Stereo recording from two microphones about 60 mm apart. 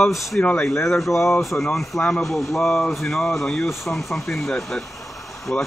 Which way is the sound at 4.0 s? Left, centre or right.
Centre.